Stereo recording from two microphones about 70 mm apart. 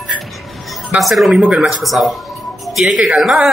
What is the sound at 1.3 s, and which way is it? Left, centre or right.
Speech, centre.